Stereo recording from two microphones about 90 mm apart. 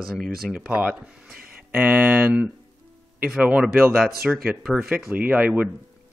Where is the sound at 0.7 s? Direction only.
15° right (ahead or behind).